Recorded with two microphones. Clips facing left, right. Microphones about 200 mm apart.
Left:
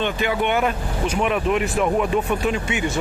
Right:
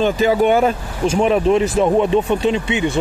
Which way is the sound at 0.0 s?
40° right (ahead or behind).